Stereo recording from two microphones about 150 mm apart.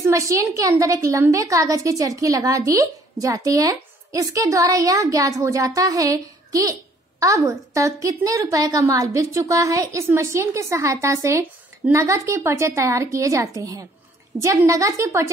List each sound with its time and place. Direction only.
0.0 s a woman's voice: 20° right (ahead or behind)